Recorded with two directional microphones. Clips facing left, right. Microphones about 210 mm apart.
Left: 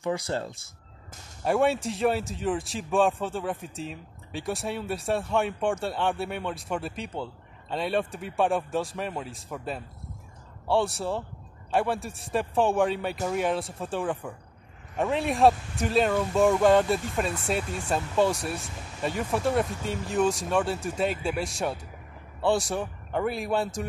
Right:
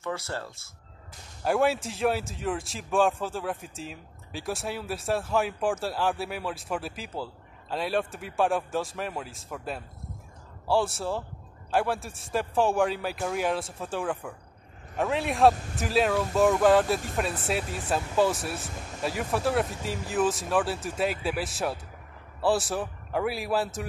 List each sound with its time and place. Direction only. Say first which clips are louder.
0.0 s speech: left 5 dB; 15° left (ahead or behind)
1.4 s a man's voice: left 1 dB; centre (ahead or behind)